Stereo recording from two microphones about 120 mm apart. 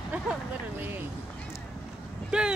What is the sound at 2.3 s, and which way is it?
Speech, 5° right (ahead or behind).